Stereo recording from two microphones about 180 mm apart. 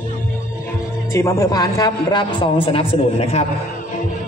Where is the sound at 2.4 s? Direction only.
30° left (ahead or behind).